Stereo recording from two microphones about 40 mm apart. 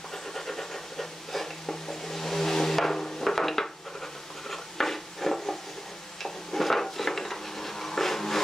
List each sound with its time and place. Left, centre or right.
0.3 s a sound: centre
4.5 s stir: centre
6.2 s dishes: centre